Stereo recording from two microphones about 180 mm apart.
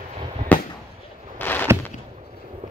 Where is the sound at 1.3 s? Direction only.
10° left (ahead or behind).